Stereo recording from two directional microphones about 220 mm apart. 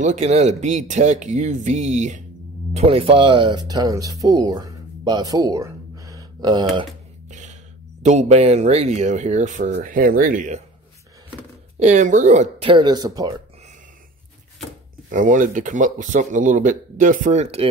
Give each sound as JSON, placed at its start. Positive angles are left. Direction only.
{"t": 0.0, "sound": "speech", "side_deg": -30}
{"t": 7.2, "sound": "a sound", "side_deg": -35}
{"t": 8.0, "sound": "speech", "side_deg": -30}
{"t": 11.8, "sound": "speech", "side_deg": -35}
{"t": 15.0, "sound": "speech", "side_deg": -35}